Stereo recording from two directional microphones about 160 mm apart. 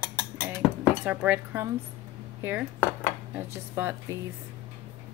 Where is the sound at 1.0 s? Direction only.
10° right (ahead or behind).